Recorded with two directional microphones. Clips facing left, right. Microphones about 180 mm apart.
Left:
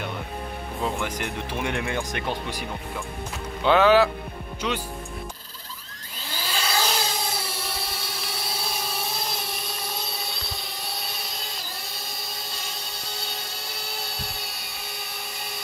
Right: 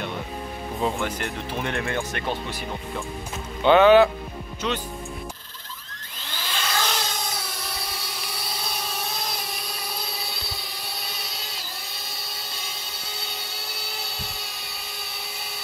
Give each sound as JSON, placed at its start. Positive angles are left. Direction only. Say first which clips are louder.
{"t": 1.0, "sound": "speech", "louder": "right 1 dB", "side_deg": 10}
{"t": 3.6, "sound": "speech", "louder": "right 3 dB", "side_deg": 0}
{"t": 6.3, "sound": "a sound", "louder": "left 1 dB", "side_deg": 10}